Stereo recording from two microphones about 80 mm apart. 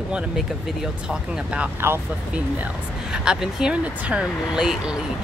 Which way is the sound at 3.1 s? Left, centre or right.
Centre.